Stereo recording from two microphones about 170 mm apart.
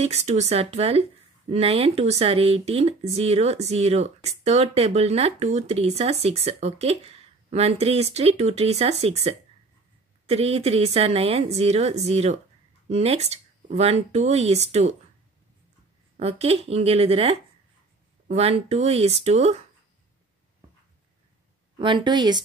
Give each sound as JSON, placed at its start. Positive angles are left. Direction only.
{"t": 0.0, "sound": "speech", "side_deg": -40}
{"t": 16.2, "sound": "speech", "side_deg": -35}
{"t": 21.7, "sound": "a woman's voice", "side_deg": -30}